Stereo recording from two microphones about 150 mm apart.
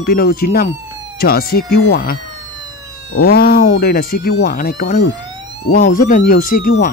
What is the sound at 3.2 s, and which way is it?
Speech, 85° left.